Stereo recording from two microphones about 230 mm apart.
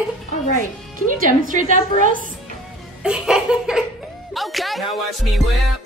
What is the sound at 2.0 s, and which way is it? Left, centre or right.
Speech, right.